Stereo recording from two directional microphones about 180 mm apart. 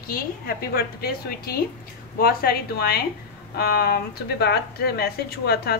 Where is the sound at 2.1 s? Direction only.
55° left (ahead or behind).